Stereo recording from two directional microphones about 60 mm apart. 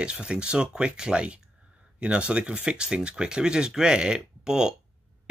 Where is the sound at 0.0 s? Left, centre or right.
Centre.